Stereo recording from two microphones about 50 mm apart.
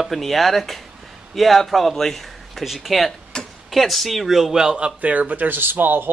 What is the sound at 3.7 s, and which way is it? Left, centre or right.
A man's voice, centre.